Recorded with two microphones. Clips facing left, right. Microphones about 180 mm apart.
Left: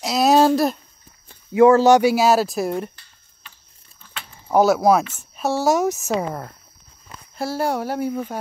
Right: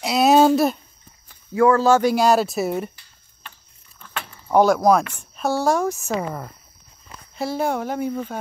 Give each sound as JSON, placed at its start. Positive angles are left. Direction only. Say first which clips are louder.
{"t": 0.0, "sound": "a sound", "louder": "right 1 dB", "side_deg": 0}
{"t": 1.3, "sound": "speech", "louder": "left 4 dB", "side_deg": 25}
{"t": 2.0, "sound": "speech", "louder": "left 1 dB", "side_deg": 5}
{"t": 4.5, "sound": "speech", "louder": "even", "side_deg": 5}
{"t": 7.3, "sound": "speech", "louder": "even", "side_deg": 5}